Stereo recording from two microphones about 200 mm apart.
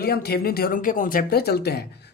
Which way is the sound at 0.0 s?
50° left (ahead or behind).